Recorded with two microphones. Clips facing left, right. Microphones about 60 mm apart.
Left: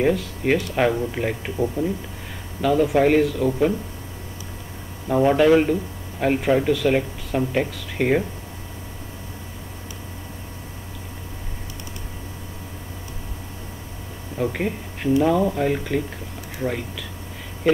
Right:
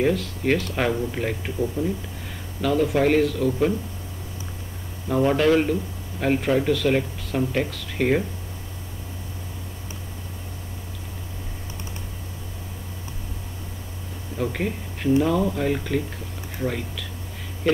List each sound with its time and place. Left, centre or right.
0.0 s speech: centre
1.8 s speech: left
2.6 s speech: centre
5.0 s speech: centre
14.4 s speech: centre